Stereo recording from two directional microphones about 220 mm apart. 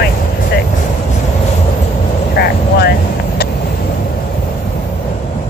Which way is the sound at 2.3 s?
45° left (ahead or behind).